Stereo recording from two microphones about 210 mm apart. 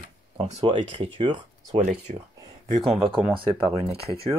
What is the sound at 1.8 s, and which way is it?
Speech, 35° right (ahead or behind).